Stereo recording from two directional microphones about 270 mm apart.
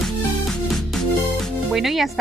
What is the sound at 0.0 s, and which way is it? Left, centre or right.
Speech, centre.